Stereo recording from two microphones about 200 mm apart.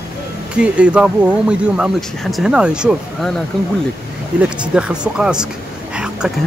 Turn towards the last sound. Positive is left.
turn(degrees=-5)  # may be behind; listen again after turning